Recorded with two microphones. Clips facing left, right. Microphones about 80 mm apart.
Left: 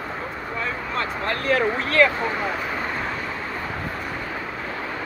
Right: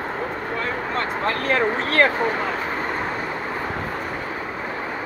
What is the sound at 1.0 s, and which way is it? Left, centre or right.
Speech, right.